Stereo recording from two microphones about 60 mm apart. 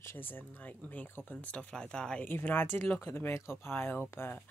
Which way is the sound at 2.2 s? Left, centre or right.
Left.